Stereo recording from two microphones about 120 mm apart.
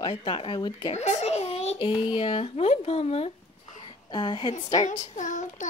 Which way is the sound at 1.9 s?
45° left (ahead or behind).